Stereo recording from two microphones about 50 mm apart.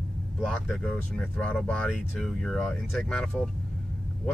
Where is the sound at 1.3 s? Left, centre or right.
Left; by 3.2 s centre.